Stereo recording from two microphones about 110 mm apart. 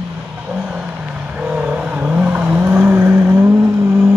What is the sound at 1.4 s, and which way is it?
Vehicle, 10° right (ahead or behind).